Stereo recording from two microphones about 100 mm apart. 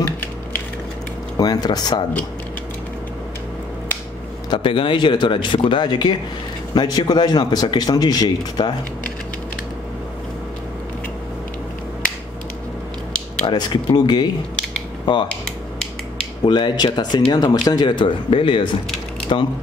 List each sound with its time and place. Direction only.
1.3 s speech: 40° left (ahead or behind)
4.5 s speech: 60° left (ahead or behind)
13.5 s speech: 45° left (ahead or behind)
16.4 s speech: 50° left (ahead or behind)
19.3 s speech: 70° left (ahead or behind)